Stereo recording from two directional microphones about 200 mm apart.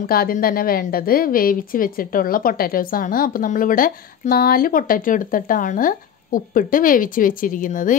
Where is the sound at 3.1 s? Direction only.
45° left (ahead or behind).